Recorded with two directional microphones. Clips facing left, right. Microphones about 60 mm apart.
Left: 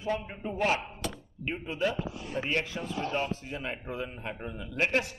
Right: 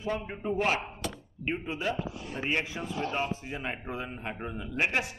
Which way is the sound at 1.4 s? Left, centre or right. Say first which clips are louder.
Left 1 dB; centre.